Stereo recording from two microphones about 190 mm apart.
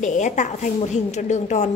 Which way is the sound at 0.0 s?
40° left (ahead or behind).